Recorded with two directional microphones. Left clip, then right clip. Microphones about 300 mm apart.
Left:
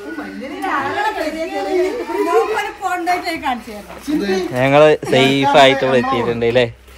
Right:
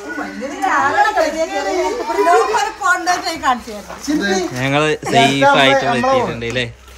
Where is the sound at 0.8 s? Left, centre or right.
Centre.